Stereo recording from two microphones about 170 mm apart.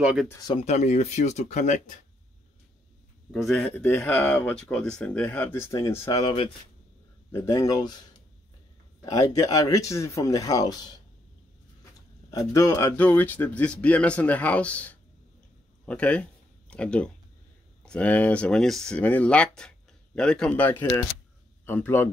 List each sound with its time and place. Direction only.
0.0 s speech: 5° right (ahead or behind)
0.3 s speech: 20° left (ahead or behind)
0.7 s speech: 40° left (ahead or behind)
3.4 s speech: 5° left (ahead or behind)
7.3 s speech: 20° left (ahead or behind)
9.0 s speech: 20° left (ahead or behind)
12.3 s speech: 20° left (ahead or behind)
15.8 s a sound: 5° left (ahead or behind)
17.8 s speech: 10° left (ahead or behind)